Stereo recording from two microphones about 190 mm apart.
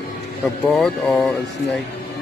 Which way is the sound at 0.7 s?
10° left (ahead or behind).